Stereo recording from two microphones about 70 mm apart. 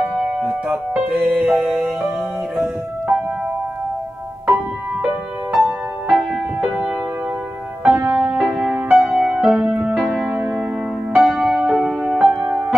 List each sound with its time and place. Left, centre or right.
0.0 s music: centre
3.1 s music: centre
5.0 s music: centre
7.8 s music: right